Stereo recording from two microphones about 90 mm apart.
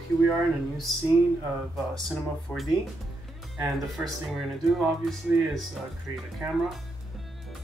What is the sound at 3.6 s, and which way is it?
Speech, 5° right (ahead or behind).